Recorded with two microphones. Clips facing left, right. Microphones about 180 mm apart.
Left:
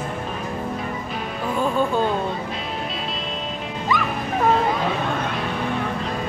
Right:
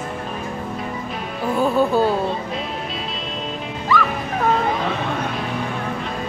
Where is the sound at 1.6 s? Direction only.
10° right (ahead or behind).